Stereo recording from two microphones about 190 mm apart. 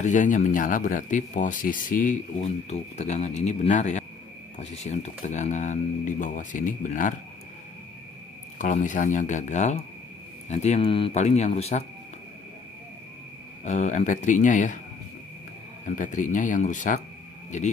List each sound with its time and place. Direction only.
0.0 s speech: 40° left (ahead or behind)
8.5 s speech: 40° left (ahead or behind)
13.7 s speech: 40° left (ahead or behind)
16.0 s speech: 40° left (ahead or behind)